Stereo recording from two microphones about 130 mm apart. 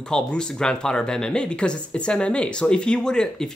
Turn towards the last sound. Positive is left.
turn(degrees=5)  # may be behind; listen again after turning